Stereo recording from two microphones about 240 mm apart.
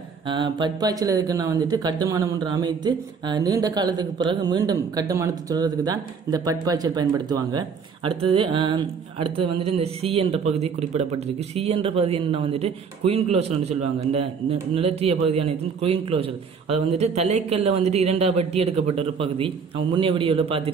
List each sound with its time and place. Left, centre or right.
0.3 s speech: centre